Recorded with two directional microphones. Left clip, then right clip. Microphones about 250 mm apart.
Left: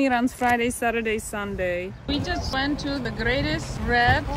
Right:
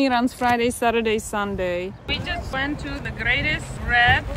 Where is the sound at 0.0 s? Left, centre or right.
Centre.